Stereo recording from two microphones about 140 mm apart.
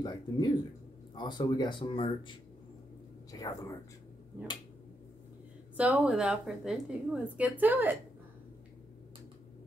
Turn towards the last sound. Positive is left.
turn(degrees=-15)  # may be behind; listen again after turning